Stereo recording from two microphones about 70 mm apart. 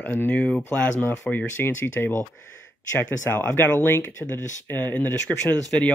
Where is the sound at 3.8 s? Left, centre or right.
Left.